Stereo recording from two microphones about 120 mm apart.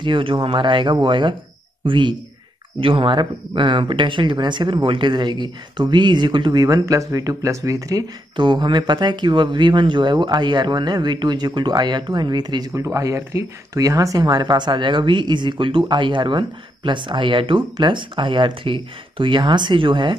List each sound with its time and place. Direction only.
0.0 s speech: 45° right (ahead or behind); by 8.0 s 25° right (ahead or behind)
8.4 s speech: 40° right (ahead or behind)